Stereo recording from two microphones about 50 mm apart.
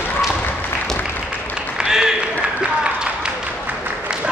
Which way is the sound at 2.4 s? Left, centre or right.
Right.